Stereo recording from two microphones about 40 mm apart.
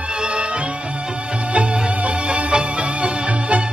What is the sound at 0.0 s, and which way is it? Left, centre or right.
Music, right.